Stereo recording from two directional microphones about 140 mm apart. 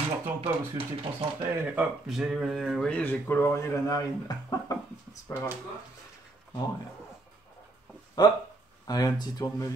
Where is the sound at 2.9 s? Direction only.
15° left (ahead or behind).